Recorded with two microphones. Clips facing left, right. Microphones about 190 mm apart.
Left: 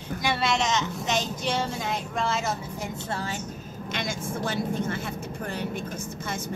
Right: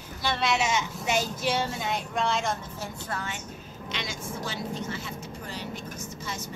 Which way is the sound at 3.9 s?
50° left (ahead or behind).